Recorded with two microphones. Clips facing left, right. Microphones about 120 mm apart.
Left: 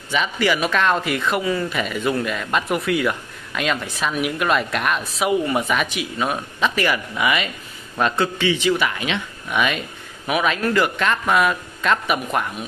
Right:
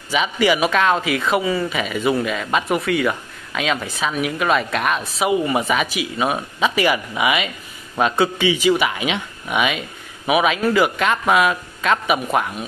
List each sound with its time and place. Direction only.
0.1 s speech: 10° right (ahead or behind)